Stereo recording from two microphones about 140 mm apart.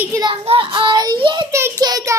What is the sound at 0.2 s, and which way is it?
Child singing, 40° right (ahead or behind).